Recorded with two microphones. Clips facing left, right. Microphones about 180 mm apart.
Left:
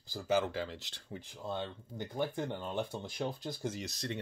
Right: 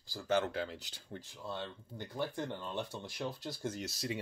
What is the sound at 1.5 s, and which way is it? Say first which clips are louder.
Speech: left 4 dB; 15° left (ahead or behind).